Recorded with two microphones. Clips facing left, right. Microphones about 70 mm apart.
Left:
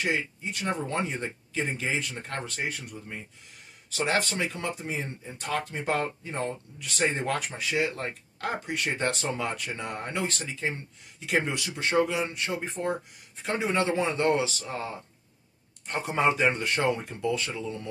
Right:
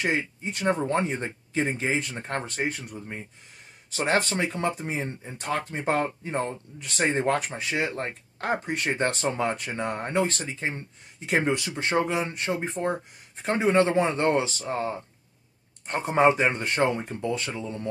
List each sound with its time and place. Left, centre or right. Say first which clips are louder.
0.0 s speech: right 2 dB; right